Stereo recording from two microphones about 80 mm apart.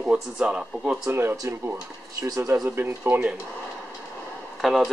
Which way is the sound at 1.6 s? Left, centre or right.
Right.